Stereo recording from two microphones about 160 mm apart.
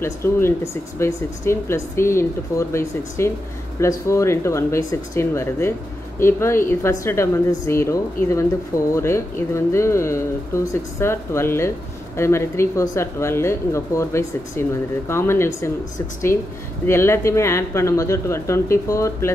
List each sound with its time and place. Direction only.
0.0 s speech: 15° left (ahead or behind)
16.8 s speech: 15° left (ahead or behind)